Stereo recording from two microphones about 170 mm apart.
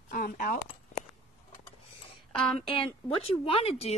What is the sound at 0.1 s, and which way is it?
Speech, 55° left (ahead or behind).